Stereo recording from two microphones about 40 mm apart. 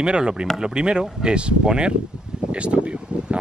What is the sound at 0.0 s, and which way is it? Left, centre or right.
Speech, right.